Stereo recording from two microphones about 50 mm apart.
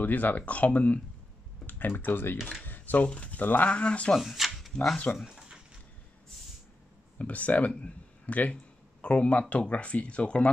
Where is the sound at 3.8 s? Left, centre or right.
Left.